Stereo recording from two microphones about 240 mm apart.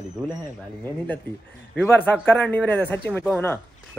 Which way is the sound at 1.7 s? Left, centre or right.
Centre.